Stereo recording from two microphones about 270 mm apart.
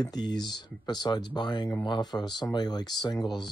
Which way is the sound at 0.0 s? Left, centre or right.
Centre.